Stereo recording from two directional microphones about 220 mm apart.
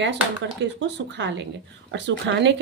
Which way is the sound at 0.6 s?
55° right (ahead or behind).